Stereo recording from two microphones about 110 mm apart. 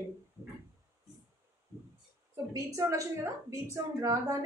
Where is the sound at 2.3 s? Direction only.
30° right (ahead or behind).